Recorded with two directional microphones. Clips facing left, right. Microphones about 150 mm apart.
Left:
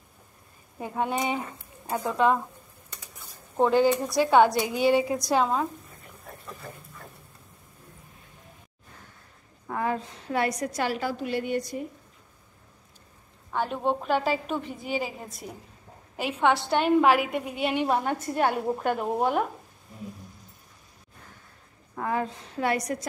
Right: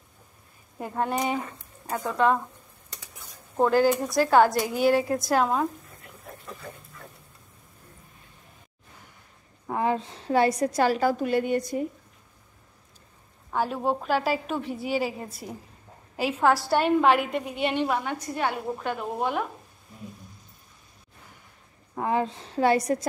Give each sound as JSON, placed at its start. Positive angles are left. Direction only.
{"t": 0.7, "sound": "a woman's voice", "side_deg": 5}
{"t": 3.5, "sound": "a woman's voice", "side_deg": 0}
{"t": 6.3, "sound": "a sound", "side_deg": 0}
{"t": 9.7, "sound": "a woman's voice", "side_deg": -20}
{"t": 13.5, "sound": "a woman's voice", "side_deg": -5}
{"t": 16.2, "sound": "a woman's voice", "side_deg": 0}
{"t": 17.8, "sound": "a woman's voice", "side_deg": 30}
{"t": 18.3, "sound": "a woman's voice", "side_deg": 45}
{"t": 19.1, "sound": "speech", "side_deg": 5}
{"t": 21.9, "sound": "a woman's voice", "side_deg": -20}